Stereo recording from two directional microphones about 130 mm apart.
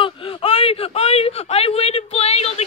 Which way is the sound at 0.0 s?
40° left (ahead or behind).